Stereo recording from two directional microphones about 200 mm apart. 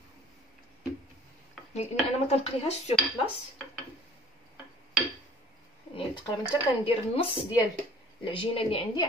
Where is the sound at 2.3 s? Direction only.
30° left (ahead or behind).